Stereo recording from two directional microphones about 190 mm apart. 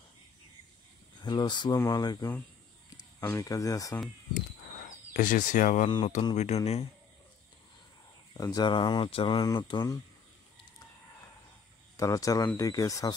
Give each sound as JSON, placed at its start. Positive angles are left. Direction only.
{"t": 1.2, "sound": "speech", "side_deg": 25}
{"t": 5.1, "sound": "speech", "side_deg": 45}
{"t": 5.9, "sound": "speech", "side_deg": 25}
{"t": 6.3, "sound": "speech", "side_deg": 35}
{"t": 8.4, "sound": "speech", "side_deg": 20}
{"t": 12.0, "sound": "speech", "side_deg": 15}